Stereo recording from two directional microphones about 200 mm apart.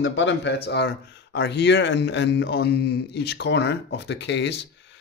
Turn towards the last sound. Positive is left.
turn(degrees=60)  # may be behind; listen again after turning